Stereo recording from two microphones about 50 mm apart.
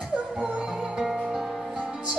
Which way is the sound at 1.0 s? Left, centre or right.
Centre.